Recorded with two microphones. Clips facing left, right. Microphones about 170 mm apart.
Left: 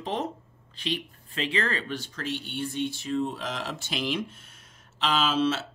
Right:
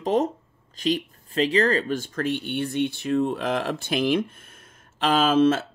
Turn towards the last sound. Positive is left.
turn(degrees=-50)  # may be behind; listen again after turning